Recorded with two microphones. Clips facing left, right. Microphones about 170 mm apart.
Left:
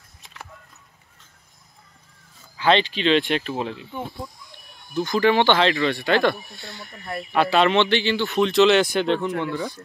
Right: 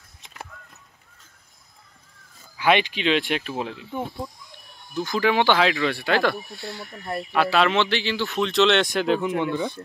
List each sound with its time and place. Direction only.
2.5 s speech: 15° right (ahead or behind)
4.9 s speech: centre (ahead or behind)
9.3 s speech: 20° right (ahead or behind)